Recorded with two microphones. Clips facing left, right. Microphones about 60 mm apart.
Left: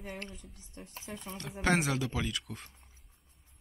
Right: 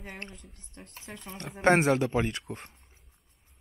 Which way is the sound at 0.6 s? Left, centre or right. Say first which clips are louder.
Even; right.